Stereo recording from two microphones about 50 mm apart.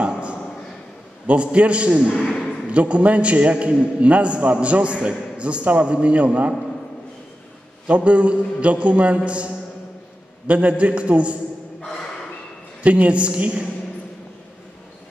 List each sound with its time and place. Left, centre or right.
0.0 s a sound: right
1.2 s a man's voice: right
7.8 s a man's voice: right
12.8 s a man's voice: right